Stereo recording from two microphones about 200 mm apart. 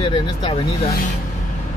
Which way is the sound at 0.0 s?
25° left (ahead or behind).